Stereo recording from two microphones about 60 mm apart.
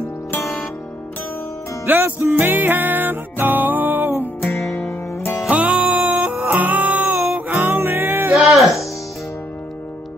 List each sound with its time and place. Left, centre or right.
1.9 s music: right
4.2 s music: left
5.5 s music: right
8.4 s music: centre